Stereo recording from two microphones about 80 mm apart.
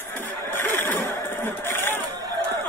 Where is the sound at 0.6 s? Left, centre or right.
Left.